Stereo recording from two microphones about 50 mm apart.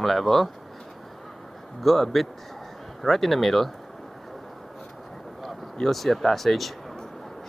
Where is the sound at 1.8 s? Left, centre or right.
Centre.